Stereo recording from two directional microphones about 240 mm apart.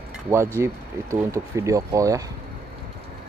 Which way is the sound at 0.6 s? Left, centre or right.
Centre.